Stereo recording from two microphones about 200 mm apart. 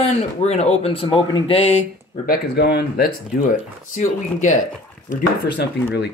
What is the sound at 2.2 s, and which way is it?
Speech, 50° left (ahead or behind).